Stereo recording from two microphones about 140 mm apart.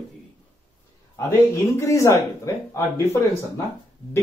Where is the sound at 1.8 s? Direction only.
20° left (ahead or behind).